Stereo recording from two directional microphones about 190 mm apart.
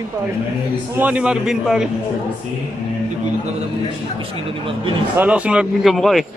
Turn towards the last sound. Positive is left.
turn(degrees=0)  # may be behind; listen again after turning